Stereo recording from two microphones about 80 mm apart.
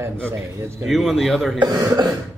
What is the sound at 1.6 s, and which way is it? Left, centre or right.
Speech, right.